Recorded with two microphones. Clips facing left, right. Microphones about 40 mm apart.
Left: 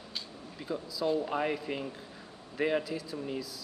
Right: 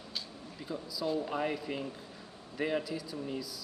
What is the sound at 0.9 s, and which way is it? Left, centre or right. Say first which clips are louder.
A man's voice: left 3 dB; centre.